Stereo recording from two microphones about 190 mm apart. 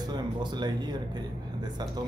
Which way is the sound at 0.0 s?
20° right (ahead or behind).